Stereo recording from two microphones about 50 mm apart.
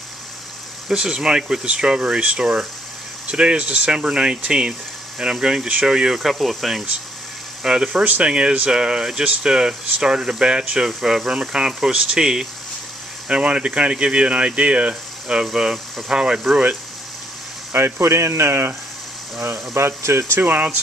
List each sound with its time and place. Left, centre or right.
0.8 s speech: centre
7.6 s speech: centre
8.0 s speech: right
10.9 s speech: centre
17.7 s speech: right
20.0 s speech: right
20.3 s speech: right